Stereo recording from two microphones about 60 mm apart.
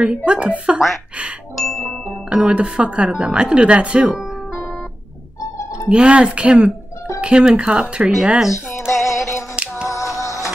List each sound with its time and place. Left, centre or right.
0.0 s speech: centre
2.2 s speech: centre
5.9 s speech: centre
8.7 s music: centre
9.1 s a sound: left
9.8 s music: left